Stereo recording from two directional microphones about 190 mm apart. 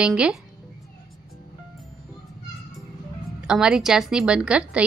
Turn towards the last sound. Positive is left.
turn(degrees=-5)  # may be behind; listen again after turning